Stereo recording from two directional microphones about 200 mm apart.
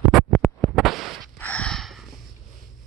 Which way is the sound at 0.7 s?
Centre (ahead or behind).